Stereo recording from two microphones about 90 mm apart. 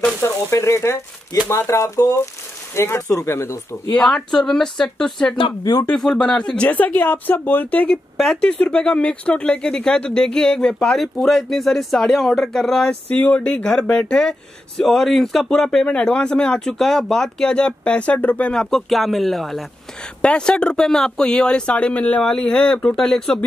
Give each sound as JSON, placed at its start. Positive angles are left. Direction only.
{"t": 0.2, "sound": "speech", "side_deg": 30}
{"t": 3.9, "sound": "speech", "side_deg": 10}
{"t": 5.6, "sound": "speech", "side_deg": 50}
{"t": 5.9, "sound": "speech", "side_deg": 5}
{"t": 13.1, "sound": "speech", "side_deg": 15}